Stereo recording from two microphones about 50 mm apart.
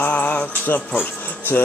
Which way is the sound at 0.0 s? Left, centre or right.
Left.